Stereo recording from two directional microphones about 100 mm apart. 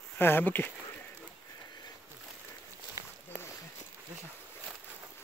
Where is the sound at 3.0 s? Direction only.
35° right (ahead or behind).